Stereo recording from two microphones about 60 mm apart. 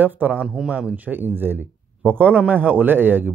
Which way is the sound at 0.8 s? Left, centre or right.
Right.